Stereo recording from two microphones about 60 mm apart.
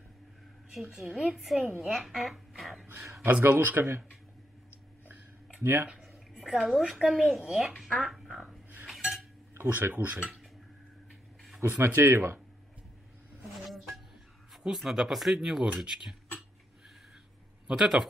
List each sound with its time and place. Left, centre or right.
0.9 s a woman's voice: centre
3.3 s speech: right
5.6 s speech: right
5.9 s a sound: centre
7.0 s speech: centre
9.5 s speech: right
11.6 s speech: right
13.7 s a sound: centre
14.6 s speech: centre
17.6 s speech: centre